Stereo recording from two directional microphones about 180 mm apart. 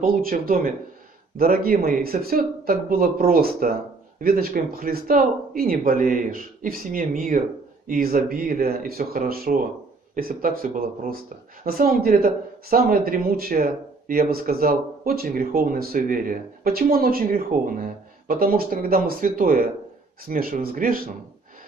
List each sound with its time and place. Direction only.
0.0 s speech: 55° right (ahead or behind)